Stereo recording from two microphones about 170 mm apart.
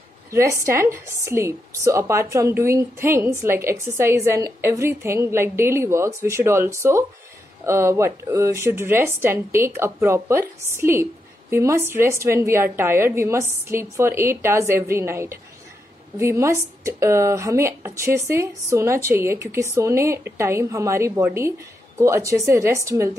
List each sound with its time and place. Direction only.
0.3 s speech: 15° right (ahead or behind)